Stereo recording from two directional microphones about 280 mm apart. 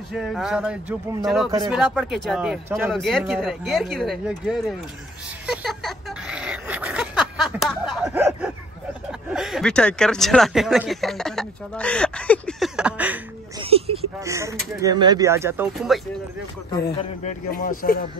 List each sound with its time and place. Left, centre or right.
0.1 s speech: centre
5.5 s a sound: centre
9.3 s speech: centre
13.6 s a sound: right
14.2 s speech: centre
16.9 s speech: left